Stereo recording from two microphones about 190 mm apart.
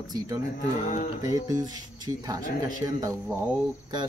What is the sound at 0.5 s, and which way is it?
Speech, 40° left (ahead or behind).